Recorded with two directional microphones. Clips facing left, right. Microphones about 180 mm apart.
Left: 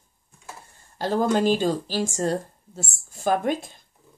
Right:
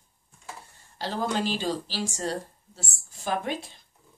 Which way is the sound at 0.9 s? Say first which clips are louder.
Left 7 dB; 45° left (ahead or behind).